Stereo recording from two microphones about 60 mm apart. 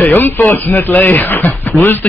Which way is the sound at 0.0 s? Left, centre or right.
Left.